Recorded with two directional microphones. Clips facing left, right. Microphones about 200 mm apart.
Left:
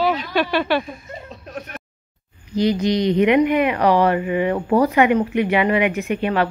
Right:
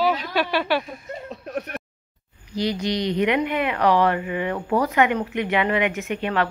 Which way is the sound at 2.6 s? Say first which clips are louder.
Left 6 dB; 20° left (ahead or behind).